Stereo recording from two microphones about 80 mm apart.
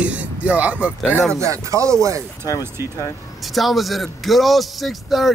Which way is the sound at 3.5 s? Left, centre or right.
Centre.